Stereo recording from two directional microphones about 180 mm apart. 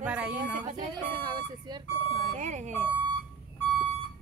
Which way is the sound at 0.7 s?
25° right (ahead or behind).